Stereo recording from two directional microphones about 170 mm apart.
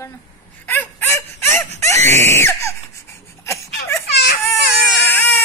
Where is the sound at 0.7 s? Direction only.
10° left (ahead or behind).